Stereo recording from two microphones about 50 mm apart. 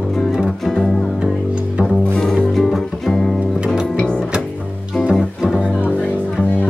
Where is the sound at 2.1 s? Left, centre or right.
Centre.